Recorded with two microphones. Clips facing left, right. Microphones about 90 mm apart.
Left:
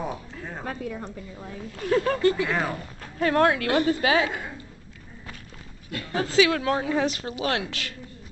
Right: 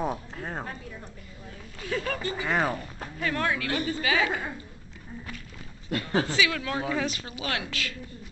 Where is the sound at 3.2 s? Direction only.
50° left (ahead or behind).